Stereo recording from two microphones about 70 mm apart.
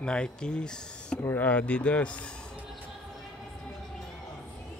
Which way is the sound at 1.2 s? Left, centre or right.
Left.